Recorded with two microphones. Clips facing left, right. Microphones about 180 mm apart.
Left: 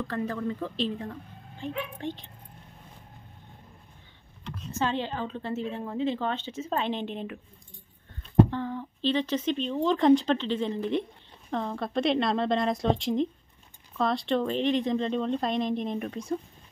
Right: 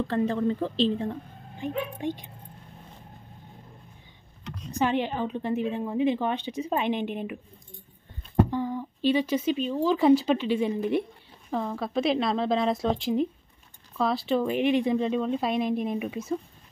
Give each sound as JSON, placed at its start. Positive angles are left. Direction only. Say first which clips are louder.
{"t": 0.0, "sound": "speech", "louder": "right 5 dB", "side_deg": -25}
{"t": 1.6, "sound": "a woman's voice", "louder": "right 4 dB", "side_deg": -15}
{"t": 4.7, "sound": "a woman's voice", "louder": "right 4 dB", "side_deg": -15}
{"t": 8.5, "sound": "a woman's voice", "louder": "right 3 dB", "side_deg": -10}